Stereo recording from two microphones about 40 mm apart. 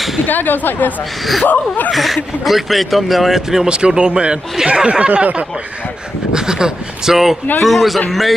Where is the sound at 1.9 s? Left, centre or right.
Centre.